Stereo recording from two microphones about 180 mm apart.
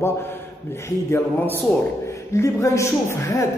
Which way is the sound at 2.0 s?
15° left (ahead or behind).